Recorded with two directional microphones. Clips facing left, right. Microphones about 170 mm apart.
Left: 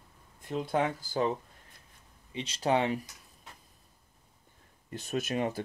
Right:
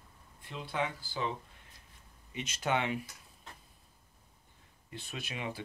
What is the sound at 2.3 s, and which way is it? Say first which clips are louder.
Speech: left 5 dB; 30° left (ahead or behind).